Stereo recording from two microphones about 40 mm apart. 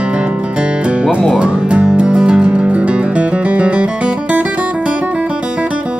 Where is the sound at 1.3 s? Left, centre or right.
Right.